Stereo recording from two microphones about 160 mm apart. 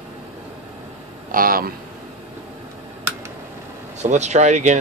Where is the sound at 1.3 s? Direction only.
65° right (ahead or behind).